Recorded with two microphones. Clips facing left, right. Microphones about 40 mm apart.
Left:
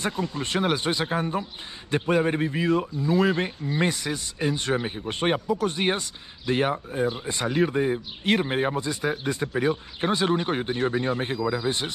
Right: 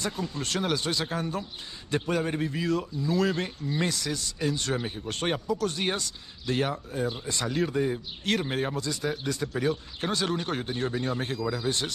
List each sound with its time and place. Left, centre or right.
0.0 s speech: left